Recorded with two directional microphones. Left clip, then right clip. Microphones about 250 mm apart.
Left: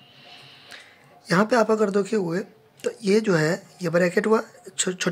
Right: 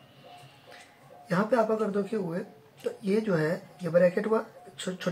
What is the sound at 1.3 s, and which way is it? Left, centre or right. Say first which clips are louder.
Speech: left 6 dB; left.